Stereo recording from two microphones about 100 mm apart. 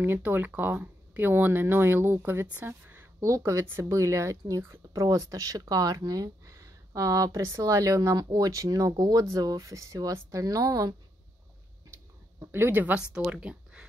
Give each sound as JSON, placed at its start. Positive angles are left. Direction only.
{"t": 0.0, "sound": "speech", "side_deg": -20}
{"t": 12.4, "sound": "speech", "side_deg": -25}